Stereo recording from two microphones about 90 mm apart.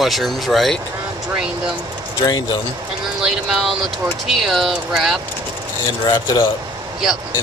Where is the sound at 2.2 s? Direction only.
55° left (ahead or behind).